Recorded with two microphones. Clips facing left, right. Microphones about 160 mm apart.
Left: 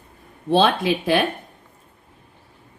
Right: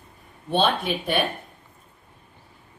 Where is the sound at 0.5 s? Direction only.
90° left.